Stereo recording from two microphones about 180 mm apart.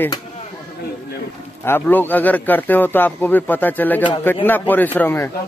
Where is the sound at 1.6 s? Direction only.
10° left (ahead or behind).